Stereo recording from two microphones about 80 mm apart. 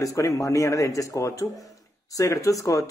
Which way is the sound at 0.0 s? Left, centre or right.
Left.